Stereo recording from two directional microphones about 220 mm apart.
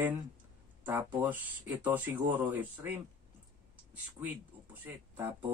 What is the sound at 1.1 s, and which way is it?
Speech, 10° right (ahead or behind).